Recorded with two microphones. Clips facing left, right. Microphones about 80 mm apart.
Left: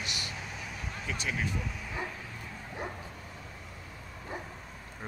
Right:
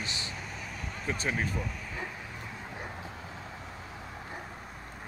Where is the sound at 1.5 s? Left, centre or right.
Centre.